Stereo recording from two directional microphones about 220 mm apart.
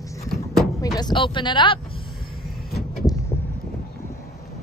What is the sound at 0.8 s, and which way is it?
Speech, 20° left (ahead or behind).